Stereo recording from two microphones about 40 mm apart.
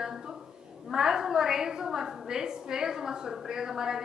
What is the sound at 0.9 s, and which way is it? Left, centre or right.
A woman's voice, centre.